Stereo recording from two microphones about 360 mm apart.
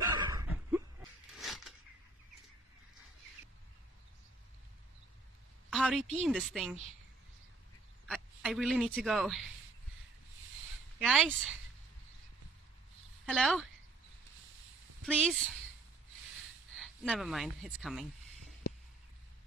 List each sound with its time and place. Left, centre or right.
0.0 s dog: centre
1.3 s a sound: centre
5.7 s a sound: centre
6.2 s speech: centre
8.1 s speech: centre
11.0 s speech: centre
13.2 s speech: centre
15.0 s speech: centre
16.7 s speech: centre